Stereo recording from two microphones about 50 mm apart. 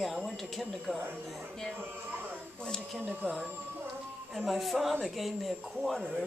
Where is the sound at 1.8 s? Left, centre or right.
Right.